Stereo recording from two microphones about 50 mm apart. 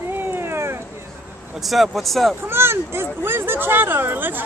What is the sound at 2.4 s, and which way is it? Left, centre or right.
Speech, right.